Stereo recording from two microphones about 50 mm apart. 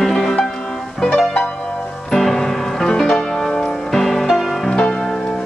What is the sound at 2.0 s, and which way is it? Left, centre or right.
Music, centre.